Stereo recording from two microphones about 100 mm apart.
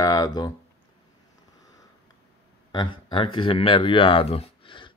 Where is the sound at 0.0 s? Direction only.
40° left (ahead or behind).